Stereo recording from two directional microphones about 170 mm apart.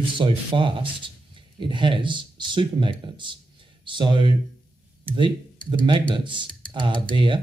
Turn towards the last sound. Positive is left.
turn(degrees=-30)  # may be behind; listen again after turning